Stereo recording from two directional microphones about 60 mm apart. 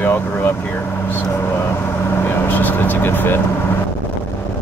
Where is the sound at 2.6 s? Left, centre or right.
Left.